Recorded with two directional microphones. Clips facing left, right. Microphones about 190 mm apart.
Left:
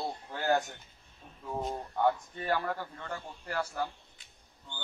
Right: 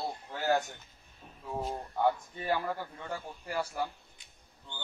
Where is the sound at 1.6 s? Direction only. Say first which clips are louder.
Even; 10° right (ahead or behind).